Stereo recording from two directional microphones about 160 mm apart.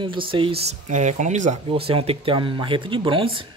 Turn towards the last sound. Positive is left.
turn(degrees=-35)  # may be behind; listen again after turning